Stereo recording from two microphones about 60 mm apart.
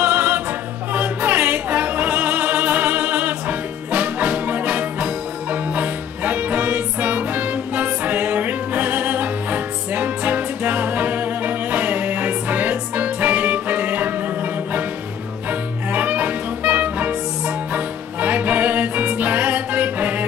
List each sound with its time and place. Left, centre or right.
0.0 s music: right
15.9 s music: right